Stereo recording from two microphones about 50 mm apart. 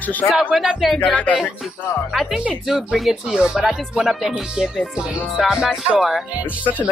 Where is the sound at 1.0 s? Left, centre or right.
Left.